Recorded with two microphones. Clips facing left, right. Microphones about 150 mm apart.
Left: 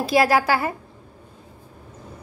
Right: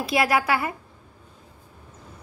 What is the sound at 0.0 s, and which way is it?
Speech, 30° left (ahead or behind).